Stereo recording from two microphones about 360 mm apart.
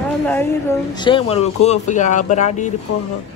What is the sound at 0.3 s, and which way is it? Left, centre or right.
Speech, centre.